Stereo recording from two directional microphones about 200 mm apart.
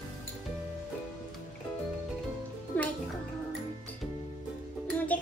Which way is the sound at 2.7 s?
10° left (ahead or behind).